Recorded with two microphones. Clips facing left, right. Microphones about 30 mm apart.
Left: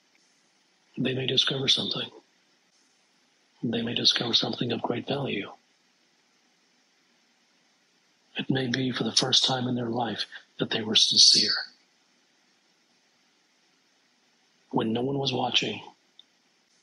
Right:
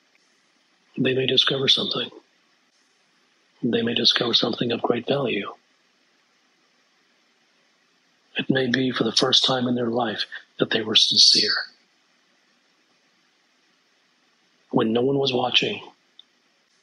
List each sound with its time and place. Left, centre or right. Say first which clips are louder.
0.9 s speech: right 6 dB; centre
3.5 s speech: right 7 dB; centre
8.3 s speech: right 6 dB; centre
14.7 s speech: right 7 dB; centre